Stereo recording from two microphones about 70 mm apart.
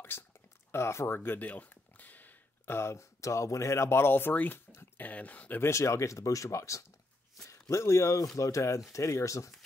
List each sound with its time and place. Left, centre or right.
0.1 s a sound: left
0.7 s speech: left
5.6 s speech: left